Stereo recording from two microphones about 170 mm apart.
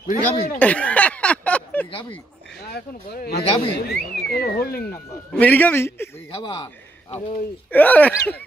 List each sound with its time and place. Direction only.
0.0 s speech: 45° left (ahead or behind)
0.6 s a sound: 10° left (ahead or behind)
1.9 s a sound: 30° left (ahead or behind)
2.7 s speech: 65° left (ahead or behind)
5.3 s speech: 10° left (ahead or behind)
6.3 s a man's voice: 30° left (ahead or behind)
7.7 s speech: 10° left (ahead or behind)